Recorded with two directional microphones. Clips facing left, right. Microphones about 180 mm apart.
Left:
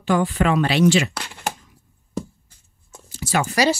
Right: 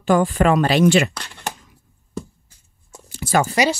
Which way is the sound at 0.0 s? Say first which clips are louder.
Right 3 dB; 45° right (ahead or behind).